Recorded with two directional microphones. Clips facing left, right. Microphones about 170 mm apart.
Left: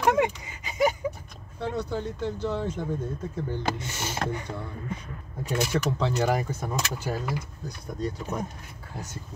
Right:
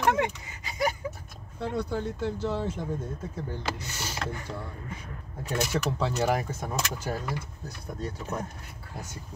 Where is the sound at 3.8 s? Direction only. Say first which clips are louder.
Left 4 dB; 25° left (ahead or behind).